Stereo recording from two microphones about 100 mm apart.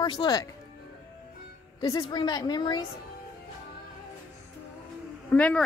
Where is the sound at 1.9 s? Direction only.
45° left (ahead or behind).